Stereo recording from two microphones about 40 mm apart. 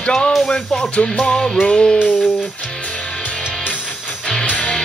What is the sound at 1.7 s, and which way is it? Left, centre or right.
Music, centre.